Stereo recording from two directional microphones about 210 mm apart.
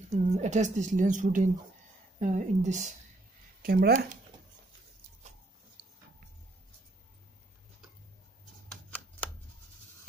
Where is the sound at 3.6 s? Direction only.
45° right (ahead or behind).